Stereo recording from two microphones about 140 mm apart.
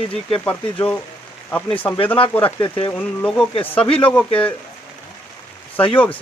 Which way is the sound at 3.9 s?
10° left (ahead or behind).